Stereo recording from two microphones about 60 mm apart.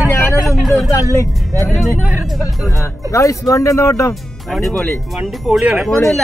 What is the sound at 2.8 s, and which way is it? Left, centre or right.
Speech, left.